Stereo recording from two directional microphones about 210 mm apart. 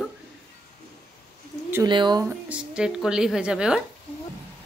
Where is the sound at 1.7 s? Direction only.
20° right (ahead or behind).